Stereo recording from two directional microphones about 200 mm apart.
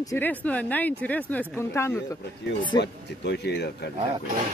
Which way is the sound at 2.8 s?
55° left (ahead or behind).